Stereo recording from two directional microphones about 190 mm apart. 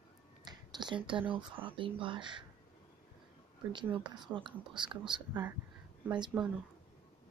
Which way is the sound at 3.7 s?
25° right (ahead or behind).